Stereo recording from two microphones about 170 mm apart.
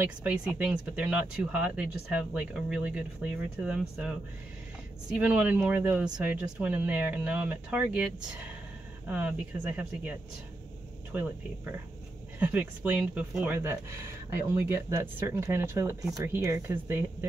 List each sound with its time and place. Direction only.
0.0 s speech: 10° right (ahead or behind)
12.4 s speech: 10° right (ahead or behind)